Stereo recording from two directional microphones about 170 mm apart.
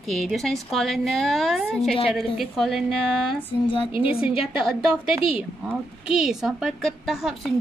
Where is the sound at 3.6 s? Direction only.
30° left (ahead or behind).